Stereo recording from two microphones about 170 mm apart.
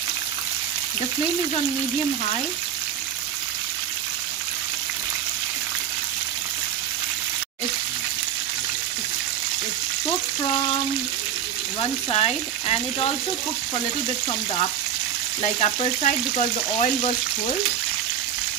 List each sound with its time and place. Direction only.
12.1 s speech: 35° left (ahead or behind)
15.6 s frying: 40° left (ahead or behind)